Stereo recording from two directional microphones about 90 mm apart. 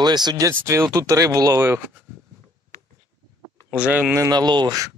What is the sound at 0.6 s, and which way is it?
Speech, 35° right (ahead or behind).